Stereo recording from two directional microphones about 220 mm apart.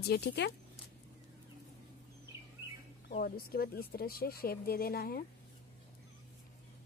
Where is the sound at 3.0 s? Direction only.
40° left (ahead or behind).